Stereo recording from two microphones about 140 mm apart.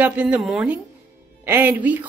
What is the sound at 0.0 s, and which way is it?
Speech, 10° right (ahead or behind).